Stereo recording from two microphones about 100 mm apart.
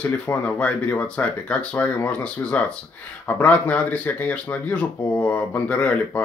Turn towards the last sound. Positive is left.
turn(degrees=15)  # may be behind; listen again after turning